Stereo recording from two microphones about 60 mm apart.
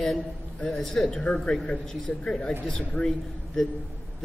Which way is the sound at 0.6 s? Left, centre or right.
Centre.